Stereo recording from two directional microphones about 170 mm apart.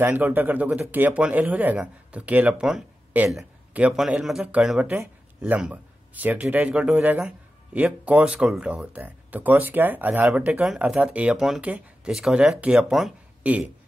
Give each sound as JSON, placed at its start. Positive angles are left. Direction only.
{"t": 0.0, "sound": "speech", "side_deg": -10}